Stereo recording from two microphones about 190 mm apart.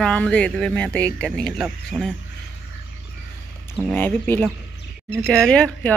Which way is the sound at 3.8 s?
5° left (ahead or behind).